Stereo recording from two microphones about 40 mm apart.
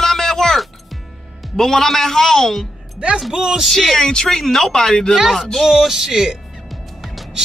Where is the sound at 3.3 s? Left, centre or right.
Centre.